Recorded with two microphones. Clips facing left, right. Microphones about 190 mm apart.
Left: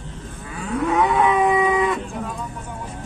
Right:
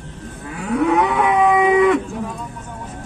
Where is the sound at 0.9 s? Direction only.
70° right (ahead or behind).